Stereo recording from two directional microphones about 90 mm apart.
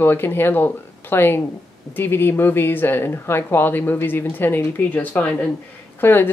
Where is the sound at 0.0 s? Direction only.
25° left (ahead or behind).